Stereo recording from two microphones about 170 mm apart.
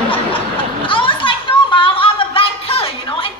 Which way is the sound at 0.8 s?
30° left (ahead or behind).